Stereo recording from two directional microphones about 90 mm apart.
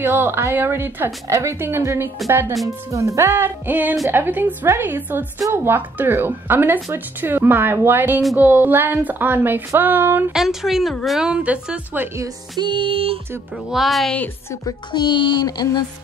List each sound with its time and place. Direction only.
0.0 s speech: 25° right (ahead or behind)
2.9 s speech: 35° right (ahead or behind)
10.3 s a woman's voice: 5° right (ahead or behind)
12.5 s music: 60° right (ahead or behind); by 13.2 s 85° right
13.7 s speech: centre (ahead or behind)
14.7 s a child's voice: 55° left (ahead or behind)
15.4 s speech: 50° left (ahead or behind)